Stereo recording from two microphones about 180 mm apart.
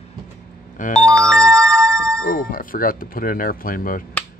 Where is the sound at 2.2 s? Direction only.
50° left (ahead or behind).